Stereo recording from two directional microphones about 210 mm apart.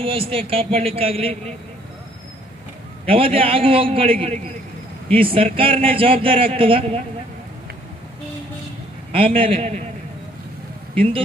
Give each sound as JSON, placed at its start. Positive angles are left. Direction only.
{"t": 0.0, "sound": "a man's voice", "side_deg": -25}
{"t": 3.1, "sound": "a man's voice", "side_deg": -25}
{"t": 9.1, "sound": "a man's voice", "side_deg": -25}